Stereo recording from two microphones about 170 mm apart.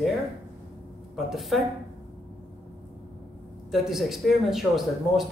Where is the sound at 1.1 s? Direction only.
Centre (ahead or behind).